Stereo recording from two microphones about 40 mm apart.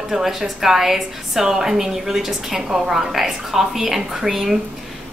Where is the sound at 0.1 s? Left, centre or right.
Centre.